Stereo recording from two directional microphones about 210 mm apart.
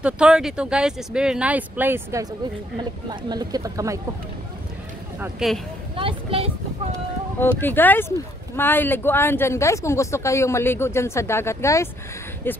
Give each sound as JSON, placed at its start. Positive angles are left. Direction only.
{"t": 0.0, "sound": "speech", "side_deg": -5}
{"t": 5.2, "sound": "speech", "side_deg": 0}
{"t": 5.9, "sound": "a sound", "side_deg": -25}
{"t": 7.3, "sound": "speech", "side_deg": 10}